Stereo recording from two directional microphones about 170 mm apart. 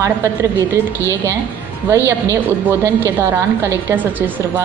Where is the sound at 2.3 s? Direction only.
15° right (ahead or behind).